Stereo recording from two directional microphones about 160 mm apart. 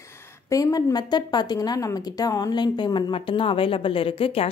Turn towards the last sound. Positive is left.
turn(degrees=35)  # may be behind; listen again after turning